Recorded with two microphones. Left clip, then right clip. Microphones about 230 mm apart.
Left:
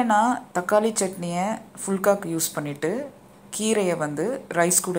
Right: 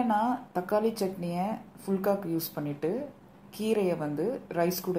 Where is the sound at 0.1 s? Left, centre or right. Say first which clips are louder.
Left 7 dB; centre.